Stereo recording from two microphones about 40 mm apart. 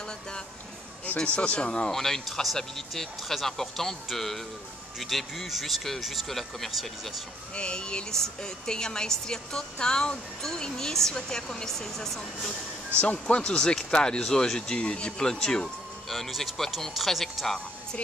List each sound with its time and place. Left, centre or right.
1.0 s speech: left
1.9 s speech: centre
7.5 s speech: left
13.0 s speech: left; by 15.7 s centre
16.1 s speech: centre